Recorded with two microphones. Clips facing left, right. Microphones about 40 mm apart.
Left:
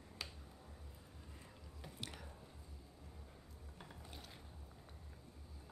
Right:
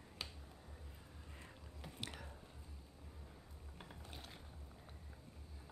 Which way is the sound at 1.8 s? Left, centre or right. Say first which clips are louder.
Right 1 dB; centre.